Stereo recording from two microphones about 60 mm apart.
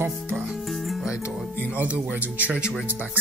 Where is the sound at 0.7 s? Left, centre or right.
Centre.